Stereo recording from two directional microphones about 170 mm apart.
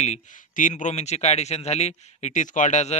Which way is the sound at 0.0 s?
45° left (ahead or behind).